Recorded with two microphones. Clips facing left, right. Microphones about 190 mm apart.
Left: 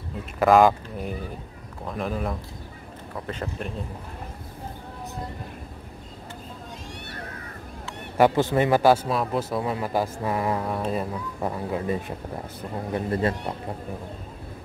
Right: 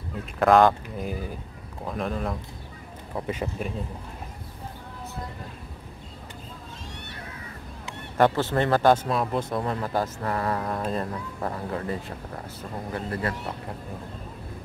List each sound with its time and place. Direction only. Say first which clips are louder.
0.4 s speech: left 1 dB; centre (ahead or behind)
8.2 s a man's voice: left 2 dB; 10° left (ahead or behind)